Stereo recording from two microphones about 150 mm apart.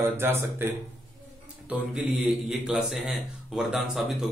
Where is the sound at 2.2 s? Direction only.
5° right (ahead or behind).